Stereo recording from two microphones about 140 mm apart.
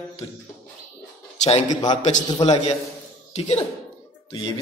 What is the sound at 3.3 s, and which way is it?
Speech, 55° left (ahead or behind).